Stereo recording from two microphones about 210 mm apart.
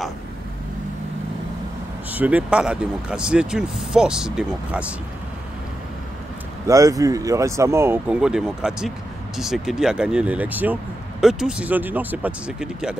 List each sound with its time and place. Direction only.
2.0 s speech: 5° right (ahead or behind)
6.7 s speech: 15° right (ahead or behind)